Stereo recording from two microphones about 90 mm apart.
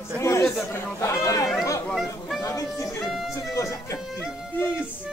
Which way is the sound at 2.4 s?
35° left (ahead or behind).